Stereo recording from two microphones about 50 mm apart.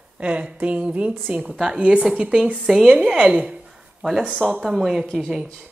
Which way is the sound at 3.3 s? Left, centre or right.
Centre.